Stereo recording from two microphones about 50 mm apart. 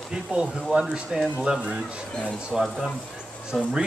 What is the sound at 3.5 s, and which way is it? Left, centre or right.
Speech, centre.